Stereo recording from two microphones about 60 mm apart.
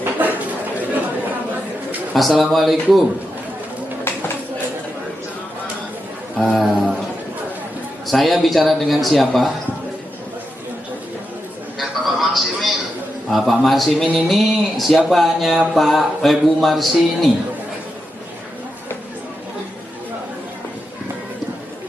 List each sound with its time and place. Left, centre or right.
0.0 s a sound: right
2.1 s speech: centre
6.3 s a sound: centre
8.1 s speech: centre
11.8 s music: centre
13.3 s a man's voice: centre